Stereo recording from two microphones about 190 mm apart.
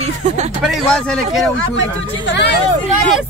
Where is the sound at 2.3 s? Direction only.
65° left (ahead or behind).